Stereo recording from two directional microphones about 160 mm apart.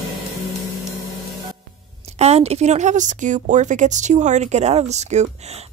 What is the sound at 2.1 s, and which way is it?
Speech, 40° right (ahead or behind).